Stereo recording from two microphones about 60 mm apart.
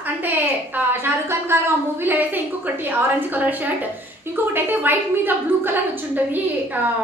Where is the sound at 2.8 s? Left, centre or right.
Right.